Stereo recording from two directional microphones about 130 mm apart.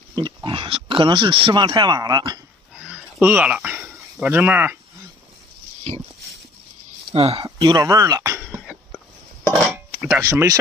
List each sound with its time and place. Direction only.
0.1 s speech: 35° right (ahead or behind)
2.8 s a sound: 10° right (ahead or behind)
7.1 s speech: 50° right (ahead or behind)
7.4 s speech: 30° right (ahead or behind)
9.9 s a sound: 15° right (ahead or behind)
10.2 s speech: 25° right (ahead or behind)